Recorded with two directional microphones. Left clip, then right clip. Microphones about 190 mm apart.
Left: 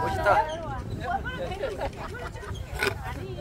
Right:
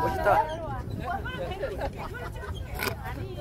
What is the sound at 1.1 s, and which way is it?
Hubbub, 35° right (ahead or behind).